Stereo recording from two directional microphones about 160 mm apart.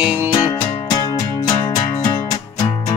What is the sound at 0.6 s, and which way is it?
Music, 25° left (ahead or behind).